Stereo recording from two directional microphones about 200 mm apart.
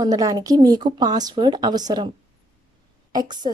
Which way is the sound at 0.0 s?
20° right (ahead or behind).